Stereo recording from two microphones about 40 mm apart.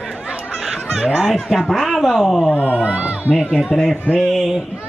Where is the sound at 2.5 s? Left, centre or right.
Left.